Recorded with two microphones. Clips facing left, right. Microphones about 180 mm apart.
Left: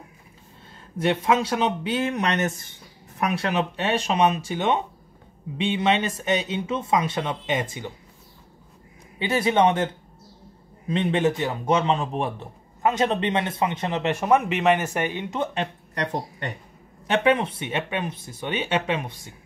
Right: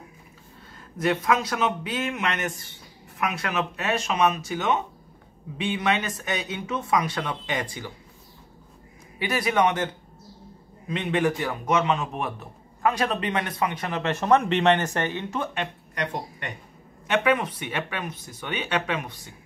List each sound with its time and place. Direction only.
0.9 s a man's voice: 25° left (ahead or behind)
9.2 s a man's voice: 25° left (ahead or behind)
10.9 s a man's voice: 30° left (ahead or behind)
15.5 s a man's voice: 35° left (ahead or behind)